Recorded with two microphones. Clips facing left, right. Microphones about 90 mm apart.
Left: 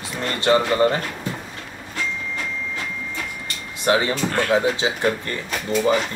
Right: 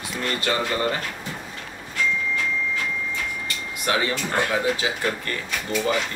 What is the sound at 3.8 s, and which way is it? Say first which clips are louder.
Speech: left 5 dB; 25° left (ahead or behind).